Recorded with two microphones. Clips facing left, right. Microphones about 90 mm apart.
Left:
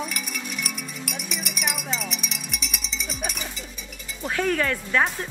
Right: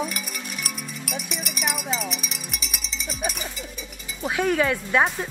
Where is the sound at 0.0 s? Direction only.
Centre (ahead or behind).